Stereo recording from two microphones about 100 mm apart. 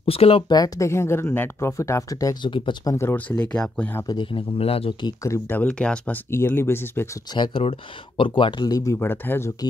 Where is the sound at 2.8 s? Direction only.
30° left (ahead or behind); by 3.9 s 10° left (ahead or behind).